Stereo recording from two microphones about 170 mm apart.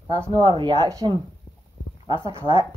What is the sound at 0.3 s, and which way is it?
Speech, 30° right (ahead or behind).